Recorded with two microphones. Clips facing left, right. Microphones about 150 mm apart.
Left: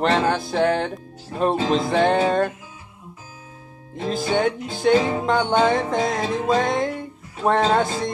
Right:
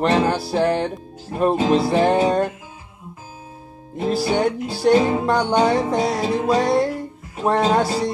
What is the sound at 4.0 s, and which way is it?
Music, 10° right (ahead or behind).